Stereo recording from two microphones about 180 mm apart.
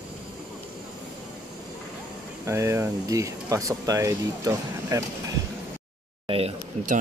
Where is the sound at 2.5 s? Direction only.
15° right (ahead or behind).